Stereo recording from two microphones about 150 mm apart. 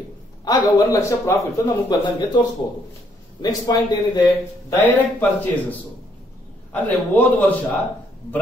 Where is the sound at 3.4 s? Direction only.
25° left (ahead or behind).